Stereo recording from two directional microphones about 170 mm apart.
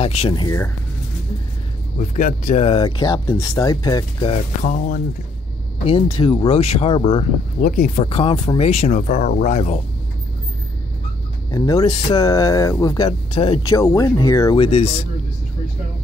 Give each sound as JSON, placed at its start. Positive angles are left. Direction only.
{"t": 0.0, "sound": "speech", "side_deg": 35}
{"t": 2.0, "sound": "speech", "side_deg": 50}
{"t": 2.6, "sound": "speech", "side_deg": 30}
{"t": 4.3, "sound": "speech", "side_deg": 45}
{"t": 5.9, "sound": "speech", "side_deg": 30}
{"t": 6.6, "sound": "speech", "side_deg": 40}
{"t": 7.6, "sound": "speech", "side_deg": 60}
{"t": 8.0, "sound": "speech", "side_deg": 35}
{"t": 11.5, "sound": "speech", "side_deg": 20}
{"t": 13.7, "sound": "speech", "side_deg": 20}
{"t": 14.6, "sound": "speech", "side_deg": 35}